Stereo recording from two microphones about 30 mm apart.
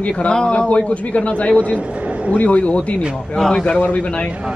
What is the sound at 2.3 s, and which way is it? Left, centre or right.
Speech, left.